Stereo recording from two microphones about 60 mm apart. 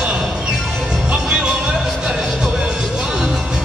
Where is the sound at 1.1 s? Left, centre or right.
Centre.